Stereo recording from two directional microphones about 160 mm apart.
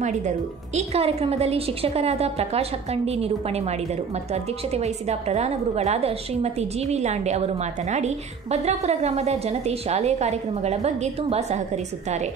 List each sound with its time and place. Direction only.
0.7 s a woman's voice: 40° right (ahead or behind)